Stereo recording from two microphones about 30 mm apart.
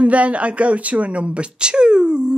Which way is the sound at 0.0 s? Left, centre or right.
Right.